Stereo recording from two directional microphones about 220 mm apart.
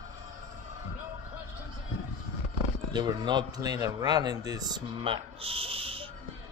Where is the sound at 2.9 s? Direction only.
20° right (ahead or behind).